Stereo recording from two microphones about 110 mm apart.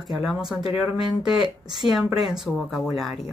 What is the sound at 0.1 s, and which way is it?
Speech, 5° right (ahead or behind).